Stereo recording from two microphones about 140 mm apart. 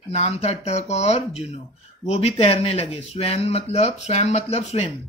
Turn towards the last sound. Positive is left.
turn(degrees=50)  # may be behind; listen again after turning